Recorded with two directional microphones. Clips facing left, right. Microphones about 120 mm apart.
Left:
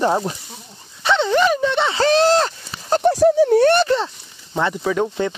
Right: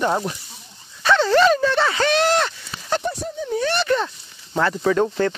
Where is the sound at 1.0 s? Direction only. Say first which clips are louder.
Right 1 dB; 20° left (ahead or behind); by 3.0 s 35° left (ahead or behind).